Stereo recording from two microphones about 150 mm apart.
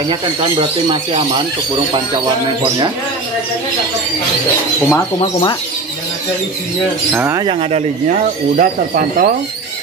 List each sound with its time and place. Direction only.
0.1 s speech: 30° right (ahead or behind)
4.8 s speech: 20° left (ahead or behind)
7.1 s speech: 10° right (ahead or behind)
8.5 s speech: 70° right (ahead or behind)